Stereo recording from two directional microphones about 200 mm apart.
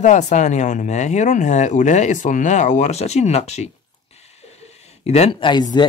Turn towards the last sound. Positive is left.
turn(degrees=20)  # may be behind; listen again after turning